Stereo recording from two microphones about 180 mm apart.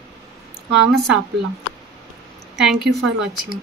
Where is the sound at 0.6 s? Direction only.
80° right.